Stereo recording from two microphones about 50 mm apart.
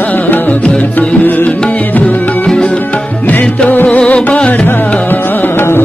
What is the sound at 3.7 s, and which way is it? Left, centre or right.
Music, left.